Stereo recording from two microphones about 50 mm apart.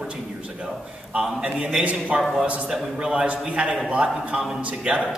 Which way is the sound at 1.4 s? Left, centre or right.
Centre.